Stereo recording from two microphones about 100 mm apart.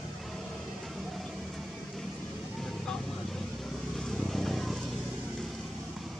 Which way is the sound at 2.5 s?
5° left (ahead or behind).